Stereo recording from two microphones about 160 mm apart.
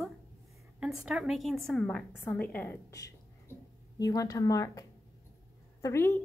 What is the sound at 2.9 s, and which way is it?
A woman's voice, 20° left (ahead or behind).